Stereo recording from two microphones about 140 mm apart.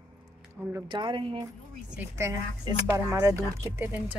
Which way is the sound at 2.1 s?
20° right (ahead or behind).